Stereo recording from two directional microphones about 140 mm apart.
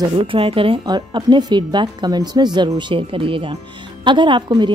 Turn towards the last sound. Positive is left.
turn(degrees=-35)  # may be behind; listen again after turning